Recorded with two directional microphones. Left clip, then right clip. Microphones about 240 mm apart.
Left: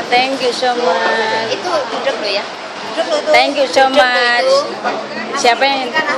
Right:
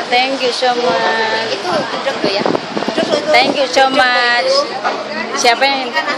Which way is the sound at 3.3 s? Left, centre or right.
Centre.